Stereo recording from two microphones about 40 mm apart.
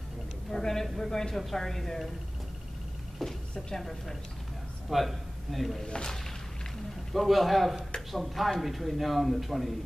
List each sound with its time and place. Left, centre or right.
0.5 s a sound: centre
0.8 s speech: centre
3.2 s a man's voice: centre
5.9 s speech: left
7.1 s speech: centre